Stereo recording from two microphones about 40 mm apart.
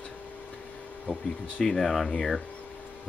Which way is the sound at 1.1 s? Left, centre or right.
Left.